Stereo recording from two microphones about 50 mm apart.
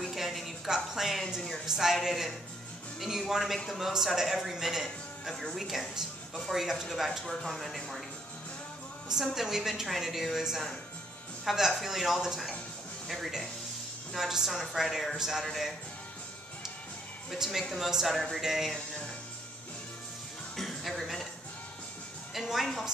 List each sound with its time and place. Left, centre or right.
0.0 s a sound: centre
0.9 s speech: centre
7.2 s speech: centre
9.1 s a woman's voice: centre
14.1 s a woman's voice: centre
17.4 s a woman's voice: centre
20.5 s music: centre
22.3 s speech: centre